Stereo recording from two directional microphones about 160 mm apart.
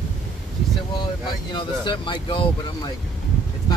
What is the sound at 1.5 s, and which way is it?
Speech, 30° left (ahead or behind).